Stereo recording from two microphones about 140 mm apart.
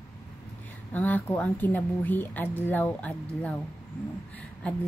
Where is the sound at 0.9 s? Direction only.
10° left (ahead or behind).